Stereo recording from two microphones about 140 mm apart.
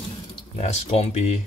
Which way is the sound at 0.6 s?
50° left (ahead or behind).